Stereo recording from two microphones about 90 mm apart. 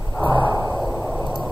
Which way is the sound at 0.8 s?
Centre (ahead or behind).